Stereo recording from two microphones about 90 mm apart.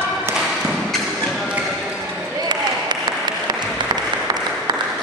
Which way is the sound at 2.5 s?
55° right (ahead or behind).